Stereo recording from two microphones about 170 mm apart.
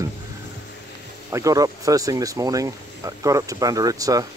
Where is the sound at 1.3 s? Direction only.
20° right (ahead or behind).